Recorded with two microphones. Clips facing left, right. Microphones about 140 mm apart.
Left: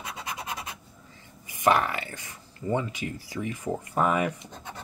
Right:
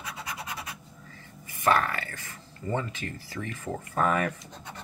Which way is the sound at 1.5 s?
15° left (ahead or behind).